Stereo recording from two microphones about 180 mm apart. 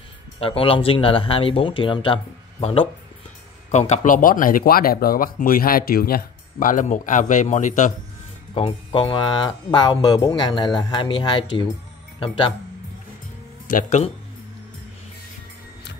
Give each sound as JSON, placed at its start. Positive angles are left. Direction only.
{"t": 0.4, "sound": "speech", "side_deg": 30}
{"t": 3.7, "sound": "speech", "side_deg": 40}
{"t": 8.5, "sound": "speech", "side_deg": 30}
{"t": 13.7, "sound": "speech", "side_deg": 45}